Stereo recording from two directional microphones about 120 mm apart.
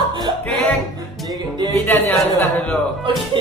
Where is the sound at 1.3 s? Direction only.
35° right (ahead or behind).